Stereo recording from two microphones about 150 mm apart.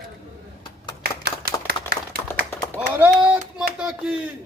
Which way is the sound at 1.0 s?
90° right.